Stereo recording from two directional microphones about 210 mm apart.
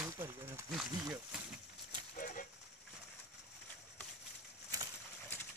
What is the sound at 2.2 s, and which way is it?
Livestock, 40° left (ahead or behind).